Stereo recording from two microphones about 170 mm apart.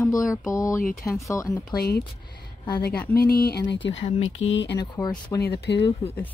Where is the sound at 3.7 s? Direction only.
90° left.